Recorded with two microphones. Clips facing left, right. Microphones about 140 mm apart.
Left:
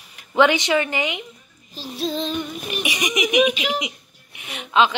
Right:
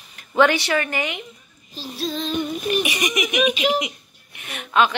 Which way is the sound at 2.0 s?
25° left (ahead or behind).